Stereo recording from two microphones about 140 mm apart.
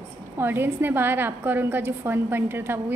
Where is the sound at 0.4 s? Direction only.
15° right (ahead or behind).